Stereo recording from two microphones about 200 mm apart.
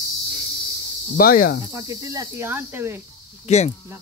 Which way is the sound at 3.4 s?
35° left (ahead or behind).